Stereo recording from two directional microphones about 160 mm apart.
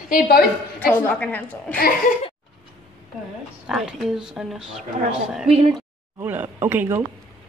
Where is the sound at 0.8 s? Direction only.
10° left (ahead or behind).